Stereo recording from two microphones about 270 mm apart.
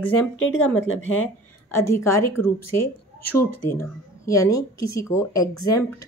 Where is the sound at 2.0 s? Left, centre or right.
Centre.